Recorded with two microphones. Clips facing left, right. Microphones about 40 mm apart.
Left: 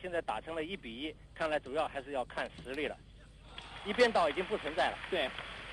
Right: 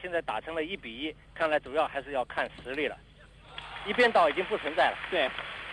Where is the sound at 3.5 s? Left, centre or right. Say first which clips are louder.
Right 6 dB; right.